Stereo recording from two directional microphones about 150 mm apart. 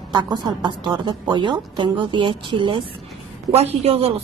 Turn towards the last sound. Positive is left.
turn(degrees=-40)  # may be behind; listen again after turning